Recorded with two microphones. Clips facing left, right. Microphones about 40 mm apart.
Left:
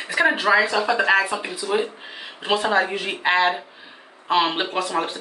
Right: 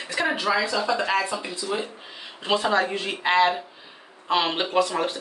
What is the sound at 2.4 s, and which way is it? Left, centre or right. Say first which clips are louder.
Speech: left 2 dB; centre.